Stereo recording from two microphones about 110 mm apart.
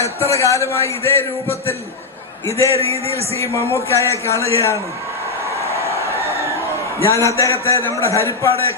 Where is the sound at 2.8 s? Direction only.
65° right (ahead or behind).